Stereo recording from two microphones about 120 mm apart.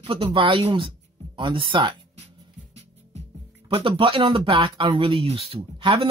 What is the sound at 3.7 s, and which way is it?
Speech, 45° right (ahead or behind).